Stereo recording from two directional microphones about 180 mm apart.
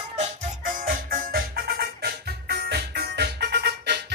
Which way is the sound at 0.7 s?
50° right (ahead or behind).